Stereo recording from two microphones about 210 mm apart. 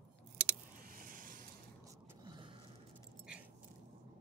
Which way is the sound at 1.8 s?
15° right (ahead or behind).